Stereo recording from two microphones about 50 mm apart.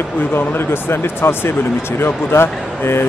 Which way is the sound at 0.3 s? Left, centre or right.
Left.